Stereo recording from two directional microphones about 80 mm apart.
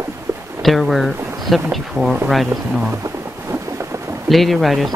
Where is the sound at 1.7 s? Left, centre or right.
Centre.